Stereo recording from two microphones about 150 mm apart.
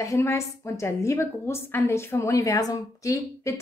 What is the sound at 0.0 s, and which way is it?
A woman's voice, 20° left (ahead or behind).